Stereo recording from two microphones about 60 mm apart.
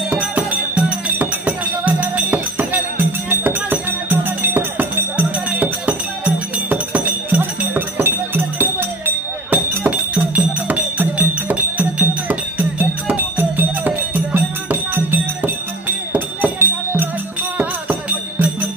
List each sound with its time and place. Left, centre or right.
0.1 s music: right